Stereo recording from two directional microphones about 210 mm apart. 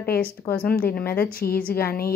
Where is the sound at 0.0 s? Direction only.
45° left (ahead or behind).